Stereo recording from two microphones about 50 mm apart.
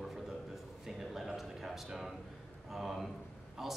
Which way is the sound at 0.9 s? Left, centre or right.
Centre.